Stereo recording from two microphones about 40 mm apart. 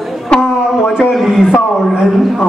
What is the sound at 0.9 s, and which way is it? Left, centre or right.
Speech, centre.